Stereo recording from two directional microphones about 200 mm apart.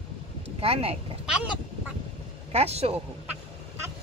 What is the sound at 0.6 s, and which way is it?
Speech, 30° right (ahead or behind).